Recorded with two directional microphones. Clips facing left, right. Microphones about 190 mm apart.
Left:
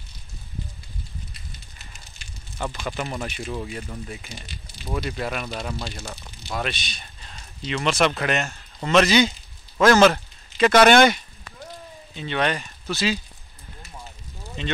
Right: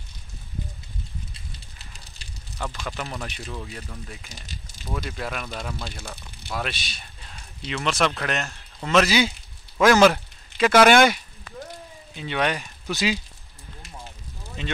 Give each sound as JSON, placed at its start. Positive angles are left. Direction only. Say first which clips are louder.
{"t": 1.3, "sound": "fire", "louder": "even", "side_deg": -35}
{"t": 2.6, "sound": "speech", "louder": "left 3 dB", "side_deg": 5}
{"t": 3.5, "sound": "speech", "louder": "left 5 dB", "side_deg": 15}
{"t": 4.3, "sound": "speech", "louder": "left 3 dB", "side_deg": -40}
{"t": 4.9, "sound": "speech", "louder": "left 3 dB", "side_deg": 0}
{"t": 12.2, "sound": "speech", "louder": "left 1 dB", "side_deg": -10}
{"t": 14.6, "sound": "speech", "louder": "left 2 dB", "side_deg": -5}